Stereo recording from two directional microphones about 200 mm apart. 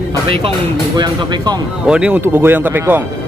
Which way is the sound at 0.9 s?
20° right (ahead or behind).